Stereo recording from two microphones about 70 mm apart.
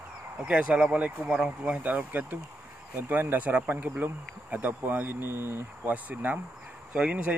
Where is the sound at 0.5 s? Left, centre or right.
Centre.